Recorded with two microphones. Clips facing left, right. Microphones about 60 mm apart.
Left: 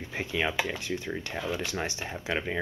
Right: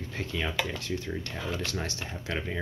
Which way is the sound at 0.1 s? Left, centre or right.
Centre.